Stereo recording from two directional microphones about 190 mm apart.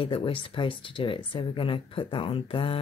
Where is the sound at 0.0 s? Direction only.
25° left (ahead or behind).